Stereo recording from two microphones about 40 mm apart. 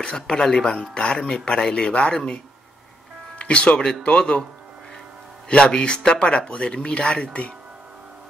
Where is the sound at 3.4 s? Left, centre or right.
Left.